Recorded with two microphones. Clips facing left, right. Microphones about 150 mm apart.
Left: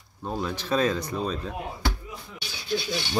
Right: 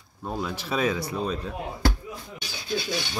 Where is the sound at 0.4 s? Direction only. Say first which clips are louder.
Left 2 dB; 10° right (ahead or behind).